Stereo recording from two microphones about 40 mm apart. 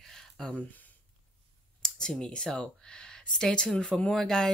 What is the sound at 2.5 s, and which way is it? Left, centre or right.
Speech, centre.